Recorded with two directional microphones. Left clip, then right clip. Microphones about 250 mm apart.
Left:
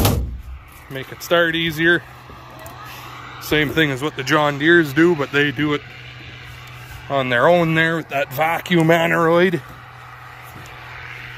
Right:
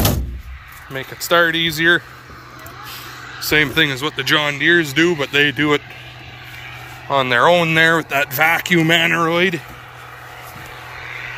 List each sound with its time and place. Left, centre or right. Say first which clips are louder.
0.9 s speech: right 2 dB; centre
3.4 s speech: right 3 dB; centre
7.1 s speech: right 2 dB; centre